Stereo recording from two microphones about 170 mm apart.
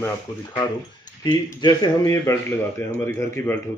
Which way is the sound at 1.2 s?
25° left (ahead or behind).